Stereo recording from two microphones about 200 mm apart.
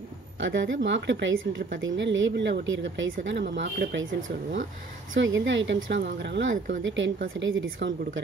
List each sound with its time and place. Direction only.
0.4 s speech: 70° right (ahead or behind)